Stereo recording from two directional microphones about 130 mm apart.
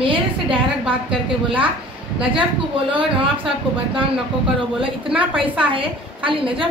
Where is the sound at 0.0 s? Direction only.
40° right (ahead or behind).